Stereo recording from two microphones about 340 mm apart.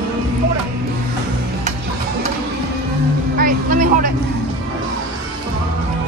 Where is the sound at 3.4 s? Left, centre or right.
Right.